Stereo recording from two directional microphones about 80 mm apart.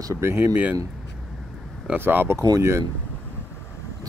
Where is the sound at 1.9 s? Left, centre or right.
Right.